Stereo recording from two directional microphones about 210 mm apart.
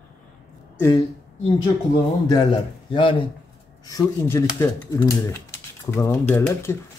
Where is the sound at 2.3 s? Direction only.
20° left (ahead or behind).